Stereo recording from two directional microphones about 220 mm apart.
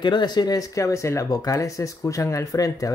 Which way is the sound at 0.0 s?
20° left (ahead or behind).